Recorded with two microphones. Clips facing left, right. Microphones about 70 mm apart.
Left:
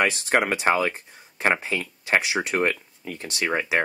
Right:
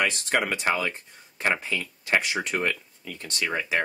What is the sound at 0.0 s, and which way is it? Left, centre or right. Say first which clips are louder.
Speech: left 3 dB; left.